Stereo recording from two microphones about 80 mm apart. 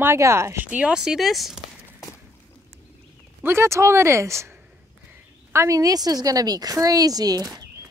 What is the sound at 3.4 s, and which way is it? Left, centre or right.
Speech, right.